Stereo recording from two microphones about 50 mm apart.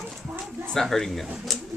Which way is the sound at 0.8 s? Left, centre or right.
Centre.